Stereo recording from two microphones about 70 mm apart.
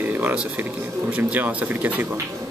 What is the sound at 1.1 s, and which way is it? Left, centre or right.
Speech, right.